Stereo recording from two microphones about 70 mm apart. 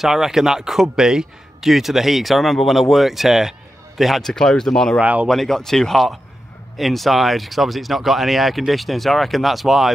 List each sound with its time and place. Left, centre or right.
0.0 s speech: centre
5.0 s speech: centre
5.3 s speech: centre